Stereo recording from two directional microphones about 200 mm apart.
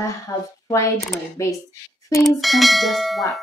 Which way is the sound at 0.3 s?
15° left (ahead or behind).